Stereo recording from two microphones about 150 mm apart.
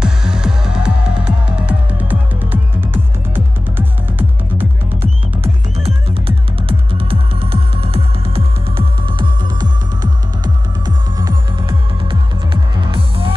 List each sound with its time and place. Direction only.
0.0 s music: 5° right (ahead or behind)
5.8 s music: 40° right (ahead or behind)